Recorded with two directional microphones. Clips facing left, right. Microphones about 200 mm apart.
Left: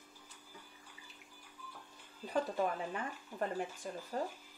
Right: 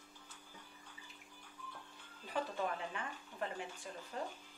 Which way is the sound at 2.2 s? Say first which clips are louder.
Left 5 dB; 40° left (ahead or behind).